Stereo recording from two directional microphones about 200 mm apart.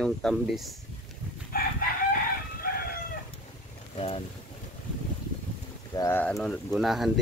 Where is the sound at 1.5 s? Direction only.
50° left (ahead or behind).